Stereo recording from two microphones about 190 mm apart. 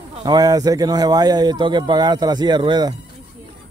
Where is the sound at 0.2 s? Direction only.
20° right (ahead or behind).